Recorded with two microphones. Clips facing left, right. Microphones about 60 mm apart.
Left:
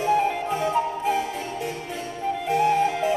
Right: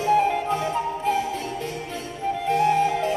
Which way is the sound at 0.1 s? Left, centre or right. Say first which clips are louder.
Right 3 dB; centre.